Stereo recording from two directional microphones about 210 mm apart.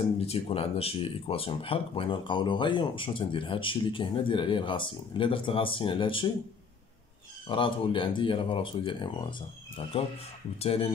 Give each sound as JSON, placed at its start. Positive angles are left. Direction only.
{"t": 0.0, "sound": "speech", "side_deg": 30}
{"t": 7.4, "sound": "speech", "side_deg": 25}